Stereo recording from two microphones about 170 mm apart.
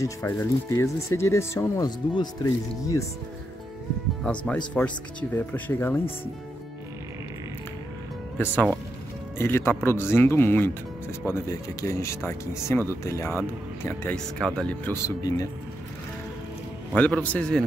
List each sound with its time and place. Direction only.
0.0 s speech: 15° left (ahead or behind)
4.7 s speech: 10° left (ahead or behind)
8.4 s speech: 10° left (ahead or behind)
15.0 s speech: 20° left (ahead or behind)
16.9 s speech: 10° left (ahead or behind)